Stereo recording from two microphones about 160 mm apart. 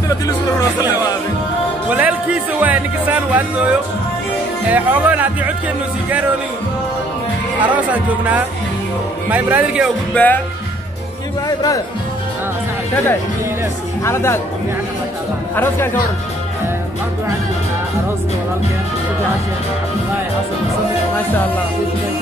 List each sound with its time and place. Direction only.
1.9 s speech: 10° right (ahead or behind)
7.7 s speech: 10° right (ahead or behind)
10.1 s speech: 10° left (ahead or behind)
11.4 s speech: 25° left (ahead or behind)
14.0 s speech: 15° left (ahead or behind)
15.5 s speech: 15° left (ahead or behind)